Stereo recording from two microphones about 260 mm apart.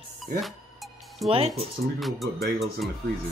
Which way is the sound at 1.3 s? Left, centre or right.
Right.